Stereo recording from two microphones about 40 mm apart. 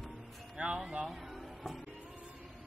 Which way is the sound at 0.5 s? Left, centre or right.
Right.